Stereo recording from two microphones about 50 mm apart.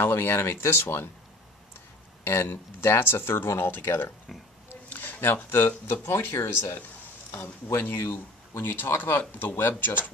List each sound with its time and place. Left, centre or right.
0.0 s speech: left
2.2 s speech: left
4.8 s speech: left